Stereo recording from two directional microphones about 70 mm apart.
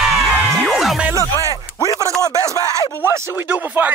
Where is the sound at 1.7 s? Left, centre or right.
Left.